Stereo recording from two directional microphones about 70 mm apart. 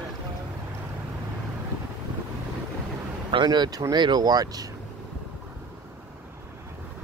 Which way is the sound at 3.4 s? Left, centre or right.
Right.